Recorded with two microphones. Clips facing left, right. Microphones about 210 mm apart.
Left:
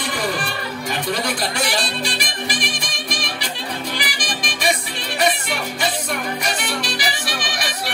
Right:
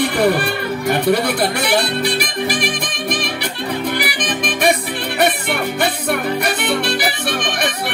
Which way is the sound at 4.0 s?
60° right (ahead or behind).